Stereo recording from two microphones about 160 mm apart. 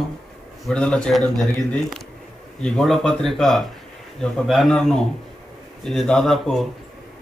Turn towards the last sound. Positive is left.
turn(degrees=0)  # may be behind; listen again after turning